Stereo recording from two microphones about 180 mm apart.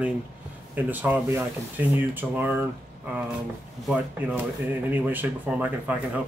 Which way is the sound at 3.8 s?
10° right (ahead or behind).